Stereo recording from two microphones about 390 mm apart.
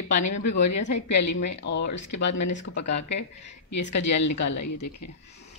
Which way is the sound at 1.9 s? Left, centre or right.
Left.